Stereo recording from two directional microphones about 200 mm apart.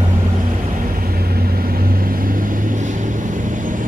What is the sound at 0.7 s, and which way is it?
Vehicle, 45° right (ahead or behind).